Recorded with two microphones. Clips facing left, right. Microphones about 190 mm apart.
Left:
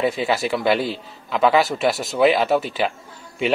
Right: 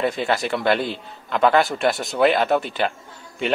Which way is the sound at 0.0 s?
5° left (ahead or behind).